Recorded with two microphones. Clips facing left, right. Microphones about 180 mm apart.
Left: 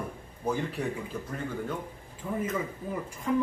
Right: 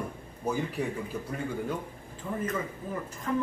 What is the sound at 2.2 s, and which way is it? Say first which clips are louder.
Speech: left 1 dB; 10° left (ahead or behind).